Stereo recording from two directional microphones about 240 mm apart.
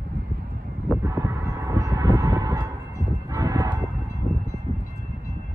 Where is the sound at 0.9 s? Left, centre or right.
Centre.